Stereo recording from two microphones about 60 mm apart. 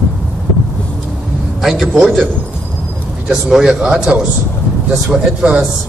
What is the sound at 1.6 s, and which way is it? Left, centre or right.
Speech, centre.